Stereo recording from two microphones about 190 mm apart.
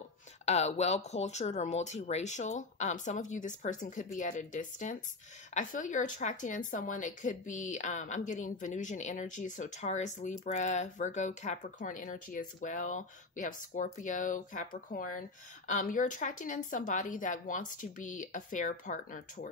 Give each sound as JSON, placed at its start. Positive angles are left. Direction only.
{"t": 0.5, "sound": "speech", "side_deg": 35}